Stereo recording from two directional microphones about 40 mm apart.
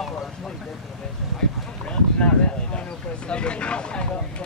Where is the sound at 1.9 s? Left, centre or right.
Left.